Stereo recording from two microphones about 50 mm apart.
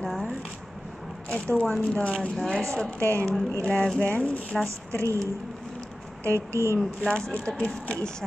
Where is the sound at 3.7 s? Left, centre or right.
Left.